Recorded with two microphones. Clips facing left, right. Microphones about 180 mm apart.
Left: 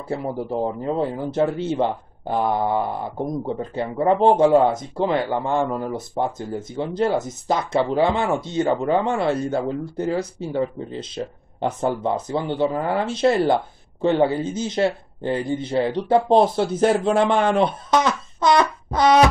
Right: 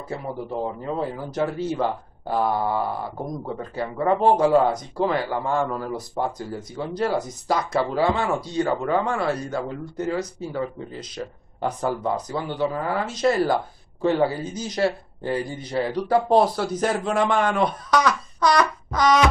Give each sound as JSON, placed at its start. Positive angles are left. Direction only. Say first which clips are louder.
{"t": 1.1, "sound": "speech", "louder": "left 4 dB", "side_deg": 25}